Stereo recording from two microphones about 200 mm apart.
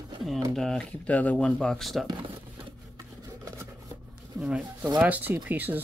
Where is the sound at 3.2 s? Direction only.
15° right (ahead or behind).